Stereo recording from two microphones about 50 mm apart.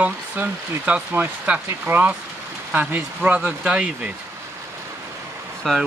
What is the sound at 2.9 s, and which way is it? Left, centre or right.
Speech, right.